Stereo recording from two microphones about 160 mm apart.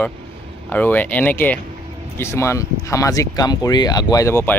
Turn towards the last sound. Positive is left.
turn(degrees=15)  # may be behind; listen again after turning